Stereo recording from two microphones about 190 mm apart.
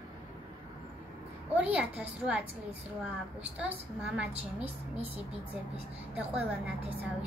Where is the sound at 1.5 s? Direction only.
5° right (ahead or behind).